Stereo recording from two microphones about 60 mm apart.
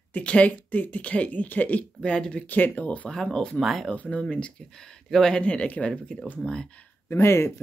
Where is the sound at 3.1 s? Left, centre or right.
Centre.